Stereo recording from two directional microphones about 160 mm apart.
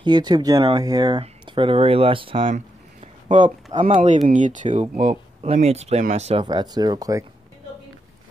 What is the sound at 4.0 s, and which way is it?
Speech, 50° right (ahead or behind).